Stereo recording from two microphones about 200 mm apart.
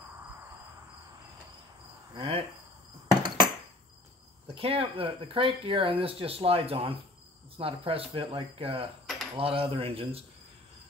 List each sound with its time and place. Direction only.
2.1 s speech: 25° right (ahead or behind)
3.1 s a sound: 20° right (ahead or behind)
4.6 s speech: 30° right (ahead or behind)